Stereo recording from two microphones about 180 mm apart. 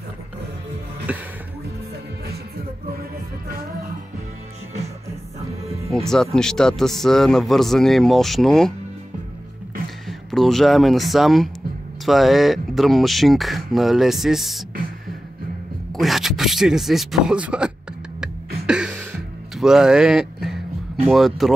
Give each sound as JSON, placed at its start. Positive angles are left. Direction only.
{"t": 1.1, "sound": "music", "side_deg": -10}
{"t": 3.0, "sound": "music", "side_deg": -55}
{"t": 6.3, "sound": "speech", "side_deg": 5}
{"t": 10.0, "sound": "speech", "side_deg": 0}
{"t": 15.9, "sound": "speech", "side_deg": 0}
{"t": 18.7, "sound": "a sound", "side_deg": -5}
{"t": 19.6, "sound": "music", "side_deg": -5}
{"t": 21.1, "sound": "speech", "side_deg": 0}